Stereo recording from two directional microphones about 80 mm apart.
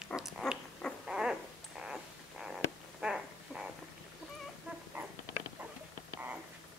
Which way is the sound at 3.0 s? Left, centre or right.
Centre.